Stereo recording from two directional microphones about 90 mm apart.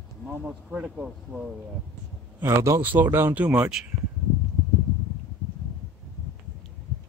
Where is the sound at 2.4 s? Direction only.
30° right (ahead or behind); by 3.9 s 10° right (ahead or behind).